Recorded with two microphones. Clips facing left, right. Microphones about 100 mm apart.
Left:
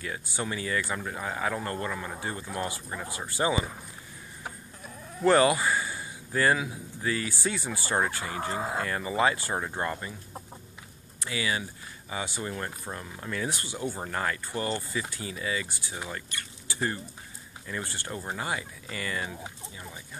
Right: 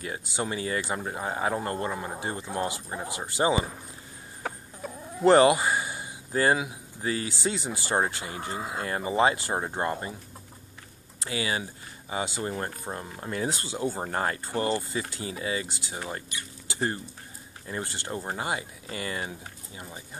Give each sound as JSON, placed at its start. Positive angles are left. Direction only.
{"t": 0.0, "sound": "speech", "side_deg": -30}
{"t": 4.4, "sound": "chicken", "side_deg": -65}
{"t": 5.2, "sound": "speech", "side_deg": -30}
{"t": 8.3, "sound": "speech", "side_deg": 40}
{"t": 8.8, "sound": "speech", "side_deg": -30}
{"t": 11.2, "sound": "speech", "side_deg": -35}